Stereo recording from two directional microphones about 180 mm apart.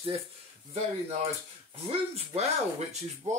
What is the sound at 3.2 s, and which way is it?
Speech, 40° right (ahead or behind).